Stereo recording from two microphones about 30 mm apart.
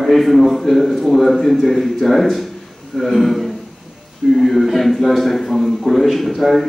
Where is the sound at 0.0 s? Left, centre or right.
Centre.